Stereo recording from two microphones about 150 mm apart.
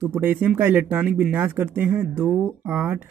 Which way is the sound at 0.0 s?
15° right (ahead or behind).